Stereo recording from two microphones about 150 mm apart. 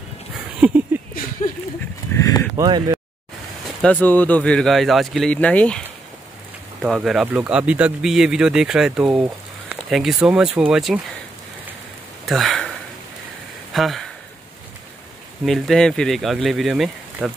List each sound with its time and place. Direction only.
0.6 s speech: 10° right (ahead or behind)
2.1 s a sound: 25° left (ahead or behind)
2.5 s speech: 25° right (ahead or behind)
3.8 s speech: 10° left (ahead or behind)
6.8 s speech: 5° right (ahead or behind)
12.3 s a sound: centre (ahead or behind)
13.7 s speech: centre (ahead or behind)
15.4 s speech: centre (ahead or behind)